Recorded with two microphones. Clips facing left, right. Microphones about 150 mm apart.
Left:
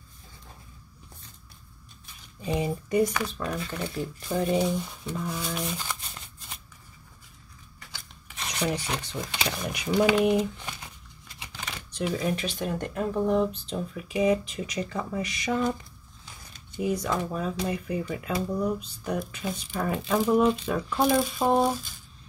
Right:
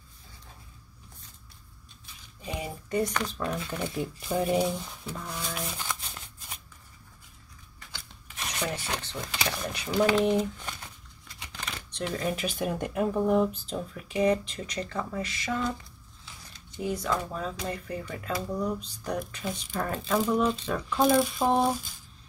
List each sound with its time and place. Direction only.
2.9 s speech: 10° left (ahead or behind)
8.5 s speech: 15° left (ahead or behind)
11.9 s speech: 5° left (ahead or behind)
12.4 s speech: 5° right (ahead or behind); by 15.7 s 20° left (ahead or behind)
17.0 s speech: 10° left (ahead or behind)